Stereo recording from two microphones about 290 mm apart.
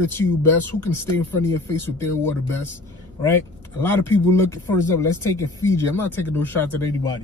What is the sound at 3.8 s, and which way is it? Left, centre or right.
Speech, centre.